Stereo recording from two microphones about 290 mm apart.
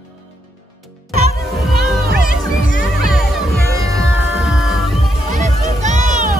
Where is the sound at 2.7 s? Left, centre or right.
Left.